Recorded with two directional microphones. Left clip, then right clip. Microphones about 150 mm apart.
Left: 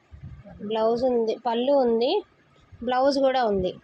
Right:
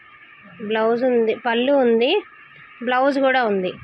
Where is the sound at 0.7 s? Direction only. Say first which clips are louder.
Right 4 dB; 20° right (ahead or behind).